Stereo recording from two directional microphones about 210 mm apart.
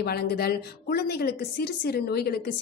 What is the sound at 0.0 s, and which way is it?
A woman's voice, 50° left (ahead or behind).